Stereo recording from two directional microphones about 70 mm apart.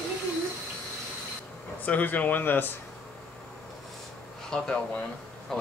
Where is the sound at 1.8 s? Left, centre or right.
Left.